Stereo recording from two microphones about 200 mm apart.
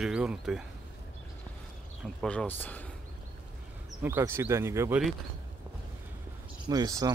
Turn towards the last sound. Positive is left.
turn(degrees=-20)  # may be behind; listen again after turning